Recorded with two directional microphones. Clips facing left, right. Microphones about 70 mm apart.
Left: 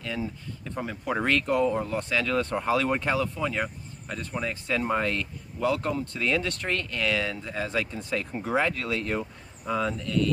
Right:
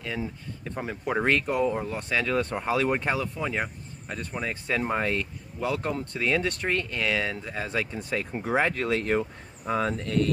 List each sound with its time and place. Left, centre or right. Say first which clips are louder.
0.7 s speech: right 1 dB; centre
8.5 s speech: right 2 dB; right